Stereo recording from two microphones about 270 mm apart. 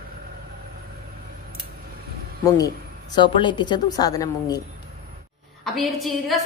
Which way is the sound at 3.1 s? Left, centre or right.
Centre.